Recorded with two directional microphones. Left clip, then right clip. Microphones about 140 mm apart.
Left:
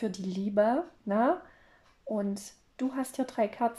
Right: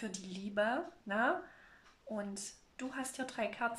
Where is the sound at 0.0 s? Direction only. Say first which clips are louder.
Left 10 dB; 40° left (ahead or behind).